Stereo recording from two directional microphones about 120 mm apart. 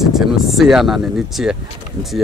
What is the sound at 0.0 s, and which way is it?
Speech, centre (ahead or behind).